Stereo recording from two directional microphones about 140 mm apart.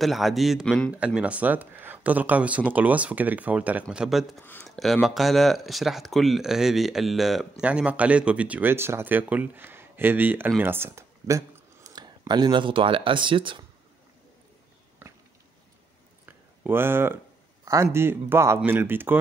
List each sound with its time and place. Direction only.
0.0 s speech: centre (ahead or behind)
0.9 s speech: 10° right (ahead or behind)
4.4 s speech: 15° left (ahead or behind)
4.6 s speech: centre (ahead or behind); by 13.7 s 35° right (ahead or behind)
16.3 s a sound: 15° right (ahead or behind)
17.9 s speech: 15° right (ahead or behind)